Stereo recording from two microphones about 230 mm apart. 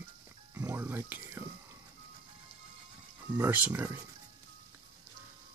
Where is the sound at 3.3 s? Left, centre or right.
Centre.